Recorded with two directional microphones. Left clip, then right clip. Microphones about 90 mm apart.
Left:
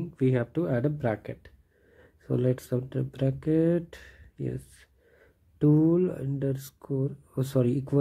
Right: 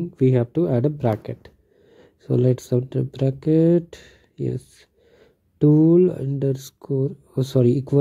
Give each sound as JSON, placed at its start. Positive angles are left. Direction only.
{"t": 0.1, "sound": "speech", "side_deg": -40}